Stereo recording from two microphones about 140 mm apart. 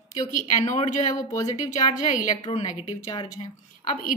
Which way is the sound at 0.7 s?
60° left (ahead or behind).